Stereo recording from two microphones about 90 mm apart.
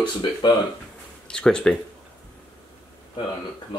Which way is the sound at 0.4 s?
55° left (ahead or behind).